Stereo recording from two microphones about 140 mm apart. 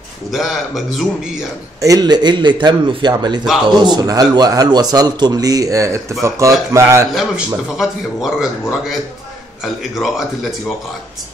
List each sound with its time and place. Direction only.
0.3 s a man's voice: centre (ahead or behind)
1.8 s speech: 25° right (ahead or behind)
7.2 s a man's voice: centre (ahead or behind)